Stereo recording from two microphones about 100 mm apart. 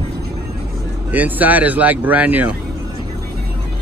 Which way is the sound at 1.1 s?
15° right (ahead or behind).